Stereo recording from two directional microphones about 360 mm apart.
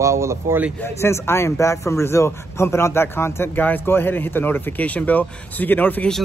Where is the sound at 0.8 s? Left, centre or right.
Centre.